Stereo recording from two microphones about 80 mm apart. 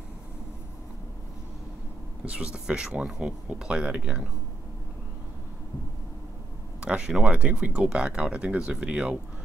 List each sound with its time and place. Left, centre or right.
2.2 s speech: centre
6.8 s a sound: centre
7.1 s speech: centre